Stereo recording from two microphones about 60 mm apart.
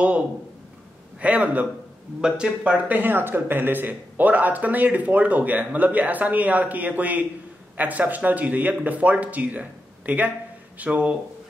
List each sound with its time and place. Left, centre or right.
1.2 s speech: right
2.2 s speech: centre
2.6 s speech: right